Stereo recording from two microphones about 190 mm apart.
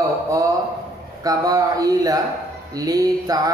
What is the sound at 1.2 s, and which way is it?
Speech, 20° right (ahead or behind).